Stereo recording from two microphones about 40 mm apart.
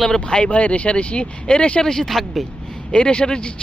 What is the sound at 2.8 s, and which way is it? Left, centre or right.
Speech, left.